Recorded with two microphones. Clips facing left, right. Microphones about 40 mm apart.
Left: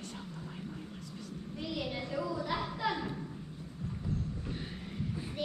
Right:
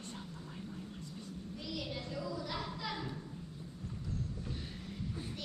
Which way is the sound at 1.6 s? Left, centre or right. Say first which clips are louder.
Left 5 dB; left.